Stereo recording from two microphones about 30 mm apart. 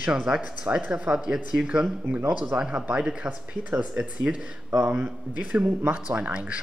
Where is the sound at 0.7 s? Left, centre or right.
Right.